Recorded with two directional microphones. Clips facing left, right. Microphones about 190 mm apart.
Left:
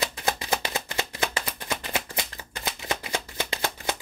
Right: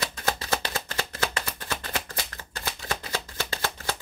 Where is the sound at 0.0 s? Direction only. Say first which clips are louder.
Left 1 dB; 15° left (ahead or behind).